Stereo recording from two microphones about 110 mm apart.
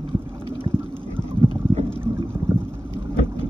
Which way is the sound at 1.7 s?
70° right (ahead or behind).